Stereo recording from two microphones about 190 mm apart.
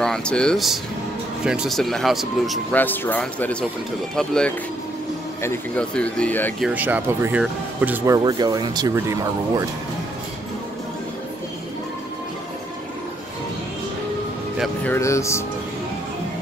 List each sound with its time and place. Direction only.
0.0 s speech: 5° left (ahead or behind)
6.6 s speech: 10° right (ahead or behind)
14.6 s speech: 10° left (ahead or behind)